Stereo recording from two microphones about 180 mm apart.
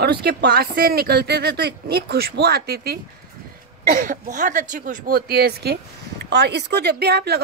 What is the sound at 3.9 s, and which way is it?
Speech, 45° right (ahead or behind).